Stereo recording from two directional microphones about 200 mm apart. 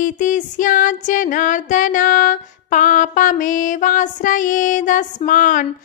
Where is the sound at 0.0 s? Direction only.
40° left (ahead or behind).